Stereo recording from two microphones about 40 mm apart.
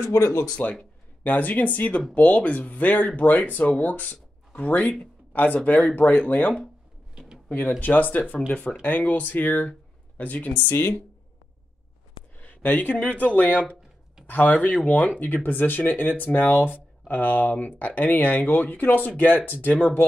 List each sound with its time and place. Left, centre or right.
0.6 s speech: left
8.5 s speech: left
10.7 s speech: left
12.4 s a sound: left
13.1 s speech: left